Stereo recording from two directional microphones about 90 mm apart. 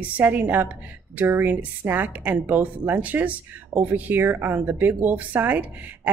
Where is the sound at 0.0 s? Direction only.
15° right (ahead or behind).